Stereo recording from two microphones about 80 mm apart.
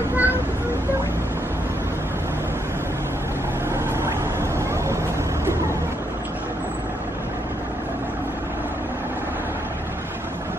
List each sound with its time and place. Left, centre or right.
0.1 s vehicle: right
3.7 s vehicle: right